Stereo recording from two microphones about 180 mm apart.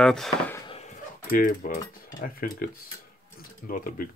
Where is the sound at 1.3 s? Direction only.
50° left (ahead or behind).